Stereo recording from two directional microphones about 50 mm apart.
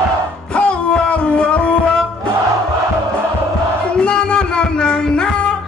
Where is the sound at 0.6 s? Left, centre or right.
Left.